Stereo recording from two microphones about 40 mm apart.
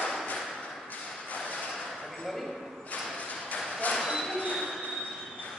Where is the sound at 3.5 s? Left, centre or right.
Left.